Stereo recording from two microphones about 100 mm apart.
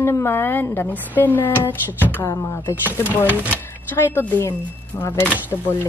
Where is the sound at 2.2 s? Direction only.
35° left (ahead or behind).